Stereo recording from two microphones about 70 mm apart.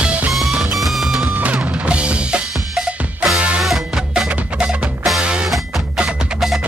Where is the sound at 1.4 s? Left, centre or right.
Centre.